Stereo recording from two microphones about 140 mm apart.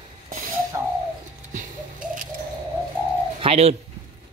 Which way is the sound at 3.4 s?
45° right (ahead or behind).